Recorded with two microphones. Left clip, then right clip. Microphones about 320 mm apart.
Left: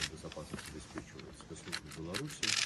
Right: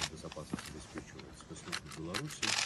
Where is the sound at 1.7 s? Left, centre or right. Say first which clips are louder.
Right 1 dB; centre.